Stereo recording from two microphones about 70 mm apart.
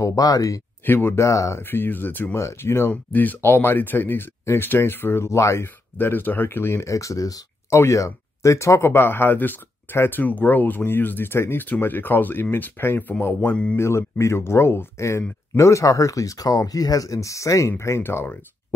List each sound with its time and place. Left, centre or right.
0.0 s speech: left
0.8 s speech: left
1.6 s speech: left
2.3 s speech: left
5.9 s speech: left
7.7 s speech: left
13.7 s speech: left
18.0 s speech: left